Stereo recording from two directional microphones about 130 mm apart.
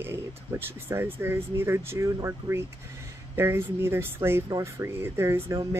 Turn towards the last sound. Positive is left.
turn(degrees=-20)  # may be behind; listen again after turning